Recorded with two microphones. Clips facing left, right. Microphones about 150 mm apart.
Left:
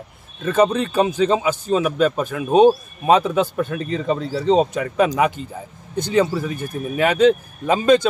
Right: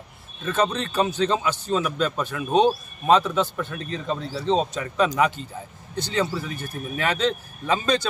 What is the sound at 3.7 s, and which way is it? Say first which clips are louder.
Speech: left 6 dB; 90° left.